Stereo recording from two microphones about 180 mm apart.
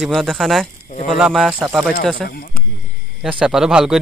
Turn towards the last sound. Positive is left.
turn(degrees=-5)  # may be behind; listen again after turning